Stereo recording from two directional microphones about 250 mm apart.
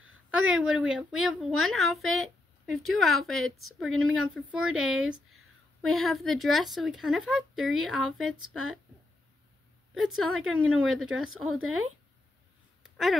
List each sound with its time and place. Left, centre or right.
0.3 s speech: centre
9.9 s speech: centre
11.2 s speech: right
12.8 s a sound: centre